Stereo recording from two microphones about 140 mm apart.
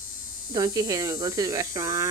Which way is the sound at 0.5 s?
25° right (ahead or behind).